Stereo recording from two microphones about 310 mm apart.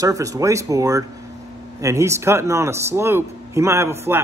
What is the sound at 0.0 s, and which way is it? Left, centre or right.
Speech, centre.